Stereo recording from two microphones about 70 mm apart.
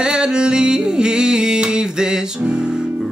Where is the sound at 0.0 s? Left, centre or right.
Centre.